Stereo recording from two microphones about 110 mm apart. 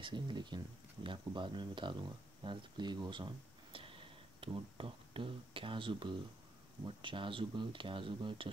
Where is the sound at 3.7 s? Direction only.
55° right (ahead or behind).